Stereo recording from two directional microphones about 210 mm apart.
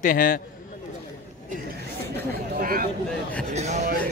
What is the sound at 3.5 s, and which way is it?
Music, 30° right (ahead or behind).